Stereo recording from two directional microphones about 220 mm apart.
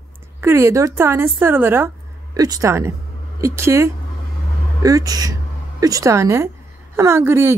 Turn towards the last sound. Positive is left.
turn(degrees=-10)  # may be behind; listen again after turning